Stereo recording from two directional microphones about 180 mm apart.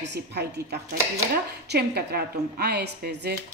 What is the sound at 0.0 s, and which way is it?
A woman's voice, 70° right (ahead or behind).